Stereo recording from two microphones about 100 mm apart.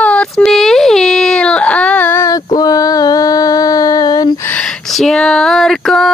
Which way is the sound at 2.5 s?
40° left (ahead or behind).